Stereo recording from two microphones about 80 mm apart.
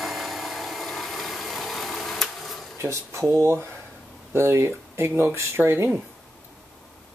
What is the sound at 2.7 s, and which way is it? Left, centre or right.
Speech, right.